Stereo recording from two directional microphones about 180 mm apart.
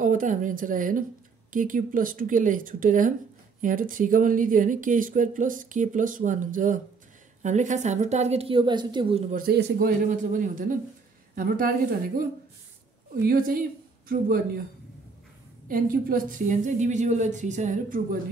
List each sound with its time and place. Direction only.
0.0 s a woman's voice: 45° right (ahead or behind); by 9.2 s 25° right (ahead or behind)
9.5 s speech: 60° right (ahead or behind)
15.7 s speech: 50° right (ahead or behind)